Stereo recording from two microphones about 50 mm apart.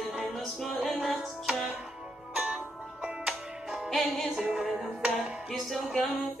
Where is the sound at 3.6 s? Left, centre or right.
Centre.